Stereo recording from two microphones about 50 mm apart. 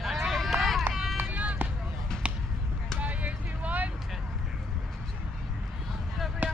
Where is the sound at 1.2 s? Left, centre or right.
Right.